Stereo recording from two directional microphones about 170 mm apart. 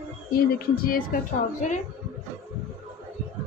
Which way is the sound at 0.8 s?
60° left (ahead or behind).